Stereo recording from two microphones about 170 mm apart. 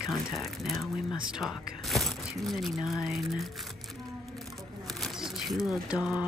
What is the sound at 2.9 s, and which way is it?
Speech, centre (ahead or behind).